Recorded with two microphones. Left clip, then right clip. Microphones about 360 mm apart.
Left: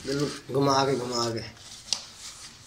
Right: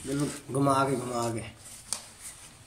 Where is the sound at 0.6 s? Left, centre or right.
Centre.